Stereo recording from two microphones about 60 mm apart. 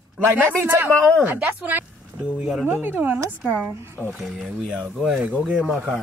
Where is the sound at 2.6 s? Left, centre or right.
Right.